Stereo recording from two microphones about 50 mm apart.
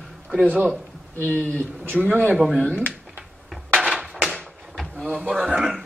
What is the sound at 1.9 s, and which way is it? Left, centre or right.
Speech, centre.